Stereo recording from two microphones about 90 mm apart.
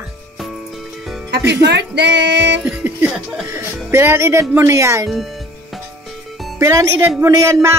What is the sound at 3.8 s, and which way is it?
Speech, 30° right (ahead or behind).